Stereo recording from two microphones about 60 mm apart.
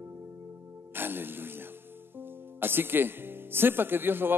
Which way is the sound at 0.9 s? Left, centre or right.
Right.